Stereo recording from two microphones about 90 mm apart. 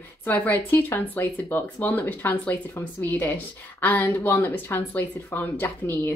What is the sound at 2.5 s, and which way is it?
Speech, 30° left (ahead or behind).